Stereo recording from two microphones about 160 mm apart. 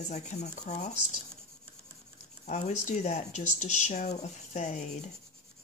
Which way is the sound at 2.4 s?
45° left (ahead or behind).